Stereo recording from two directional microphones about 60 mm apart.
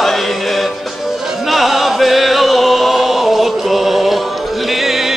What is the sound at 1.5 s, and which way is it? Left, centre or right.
Music, centre.